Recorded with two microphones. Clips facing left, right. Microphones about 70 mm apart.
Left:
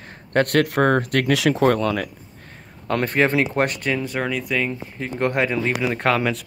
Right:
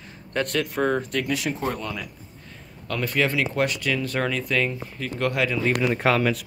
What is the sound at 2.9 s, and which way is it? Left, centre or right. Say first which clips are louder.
Speech: left 5 dB; left.